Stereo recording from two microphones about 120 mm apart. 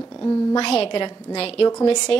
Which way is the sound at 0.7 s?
50° left (ahead or behind).